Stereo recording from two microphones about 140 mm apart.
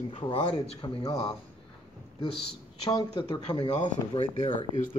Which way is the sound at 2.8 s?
25° left (ahead or behind).